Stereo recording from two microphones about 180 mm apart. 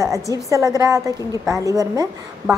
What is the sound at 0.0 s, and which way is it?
A woman's voice, 20° right (ahead or behind).